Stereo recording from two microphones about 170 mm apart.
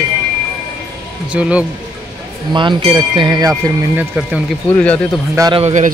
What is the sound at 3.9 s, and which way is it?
Speech, 5° right (ahead or behind).